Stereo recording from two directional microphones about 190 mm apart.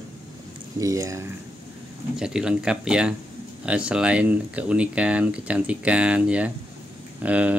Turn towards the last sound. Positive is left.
turn(degrees=-10)  # may be behind; listen again after turning